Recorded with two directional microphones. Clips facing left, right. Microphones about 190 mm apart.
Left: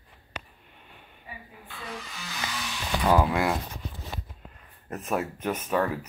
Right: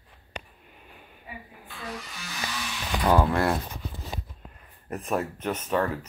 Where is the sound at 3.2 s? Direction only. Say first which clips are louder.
Right 1 dB; 10° left (ahead or behind).